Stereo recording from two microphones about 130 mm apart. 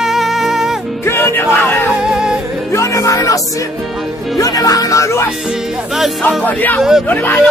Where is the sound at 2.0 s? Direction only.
5° right (ahead or behind).